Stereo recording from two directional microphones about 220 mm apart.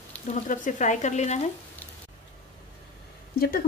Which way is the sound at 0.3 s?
35° left (ahead or behind).